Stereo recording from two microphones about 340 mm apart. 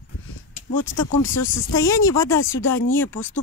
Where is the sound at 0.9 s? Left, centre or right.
Left.